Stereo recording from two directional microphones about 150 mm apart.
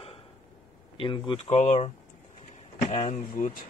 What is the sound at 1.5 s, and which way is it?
Speech, 55° left (ahead or behind).